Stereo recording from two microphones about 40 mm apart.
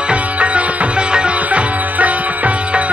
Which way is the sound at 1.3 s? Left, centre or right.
Right.